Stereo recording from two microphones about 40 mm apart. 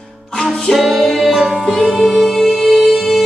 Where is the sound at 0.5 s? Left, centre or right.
Centre.